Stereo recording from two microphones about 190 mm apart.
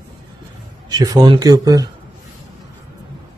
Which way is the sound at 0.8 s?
20° right (ahead or behind).